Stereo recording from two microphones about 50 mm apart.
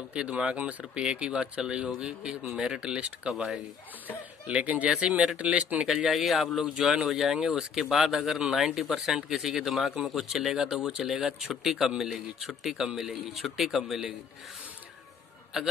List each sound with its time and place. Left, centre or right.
0.1 s a man's voice: right; by 3.6 s centre
4.5 s speech: right
5.9 s a man's voice: centre
15.5 s a man's voice: centre